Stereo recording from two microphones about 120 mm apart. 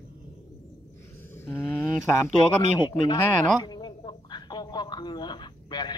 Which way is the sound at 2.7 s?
40° left (ahead or behind).